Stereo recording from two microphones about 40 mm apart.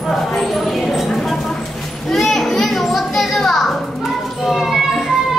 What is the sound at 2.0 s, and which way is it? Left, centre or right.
Children playing, centre.